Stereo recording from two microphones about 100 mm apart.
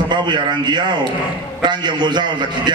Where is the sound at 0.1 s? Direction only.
50° right (ahead or behind).